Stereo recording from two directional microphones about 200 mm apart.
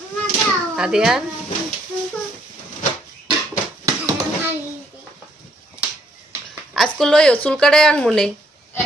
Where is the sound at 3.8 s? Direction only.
15° right (ahead or behind).